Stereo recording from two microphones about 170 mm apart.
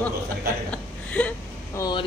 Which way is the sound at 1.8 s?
25° left (ahead or behind).